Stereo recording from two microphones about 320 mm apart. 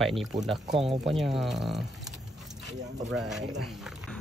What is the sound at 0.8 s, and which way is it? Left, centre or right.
Speech, centre.